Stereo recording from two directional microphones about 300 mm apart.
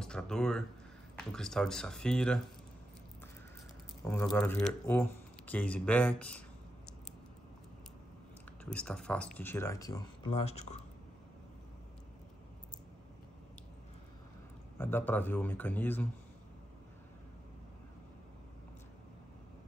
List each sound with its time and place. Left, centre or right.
0.0 s speech: centre
4.0 s speech: centre
8.7 s speech: centre; by 10.8 s left
14.8 s speech: centre